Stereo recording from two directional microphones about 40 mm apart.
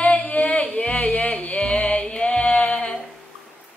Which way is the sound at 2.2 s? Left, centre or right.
Left.